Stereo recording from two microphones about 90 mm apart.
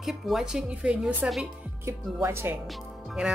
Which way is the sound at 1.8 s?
30° right (ahead or behind).